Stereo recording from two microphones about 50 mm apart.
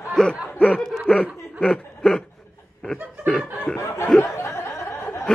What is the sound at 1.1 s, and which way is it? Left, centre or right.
Speech, left.